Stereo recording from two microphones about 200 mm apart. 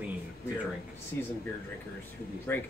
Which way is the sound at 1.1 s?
10° left (ahead or behind).